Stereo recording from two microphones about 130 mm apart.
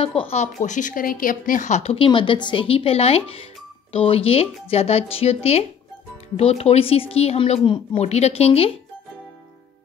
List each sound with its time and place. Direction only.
0.0 s speech: 50° left (ahead or behind)
2.0 s speech: 40° left (ahead or behind)
8.0 s speech: 55° left (ahead or behind)